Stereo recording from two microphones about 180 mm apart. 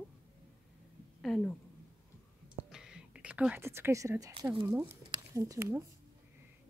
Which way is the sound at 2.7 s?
5° right (ahead or behind).